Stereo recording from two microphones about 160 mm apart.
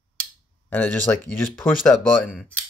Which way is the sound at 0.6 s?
10° left (ahead or behind).